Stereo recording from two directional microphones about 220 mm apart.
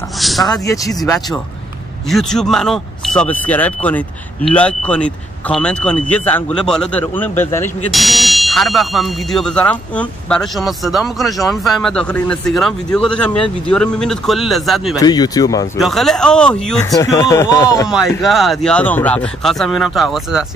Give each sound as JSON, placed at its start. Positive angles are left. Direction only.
{"t": 0.2, "sound": "a sound", "side_deg": 0}
{"t": 0.5, "sound": "speech", "side_deg": 15}
{"t": 2.0, "sound": "speech", "side_deg": 0}
{"t": 15.0, "sound": "speech", "side_deg": 15}
{"t": 15.8, "sound": "speech", "side_deg": 0}
{"t": 17.8, "sound": "speech", "side_deg": 0}